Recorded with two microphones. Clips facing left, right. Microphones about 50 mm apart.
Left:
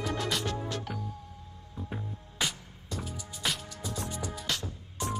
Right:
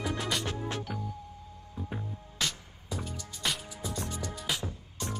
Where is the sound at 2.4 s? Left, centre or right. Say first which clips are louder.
Left 1 dB; centre.